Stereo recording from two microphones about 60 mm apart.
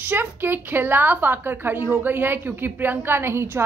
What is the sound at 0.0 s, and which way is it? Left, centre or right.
A woman's voice, right.